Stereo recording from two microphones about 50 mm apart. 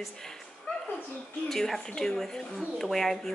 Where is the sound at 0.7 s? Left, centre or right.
Left.